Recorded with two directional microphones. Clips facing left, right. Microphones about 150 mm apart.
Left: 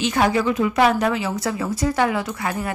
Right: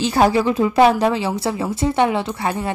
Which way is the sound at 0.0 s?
35° right (ahead or behind).